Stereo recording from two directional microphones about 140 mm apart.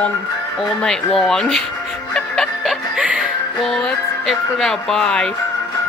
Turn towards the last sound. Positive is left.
turn(degrees=5)  # may be behind; listen again after turning